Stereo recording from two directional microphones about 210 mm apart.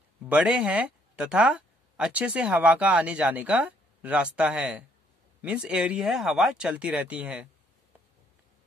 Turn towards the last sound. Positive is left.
turn(degrees=-5)  # may be behind; listen again after turning